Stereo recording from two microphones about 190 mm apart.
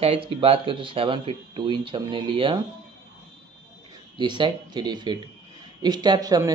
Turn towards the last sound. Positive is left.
turn(degrees=-20)  # may be behind; listen again after turning